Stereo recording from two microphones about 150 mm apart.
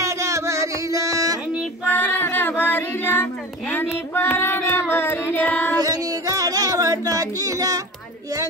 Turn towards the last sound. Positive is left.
turn(degrees=-25)  # may be behind; listen again after turning